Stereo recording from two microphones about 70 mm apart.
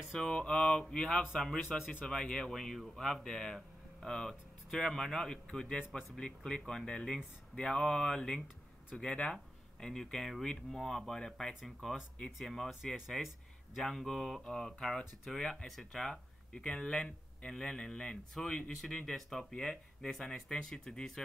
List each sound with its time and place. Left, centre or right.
0.2 s speech: centre